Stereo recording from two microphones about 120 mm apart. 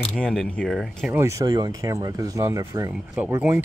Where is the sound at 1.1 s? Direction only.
20° right (ahead or behind).